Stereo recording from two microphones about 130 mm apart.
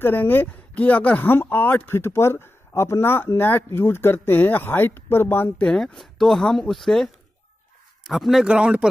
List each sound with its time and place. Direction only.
0.0 s a man's voice: 15° left (ahead or behind); by 8.8 s 10° right (ahead or behind)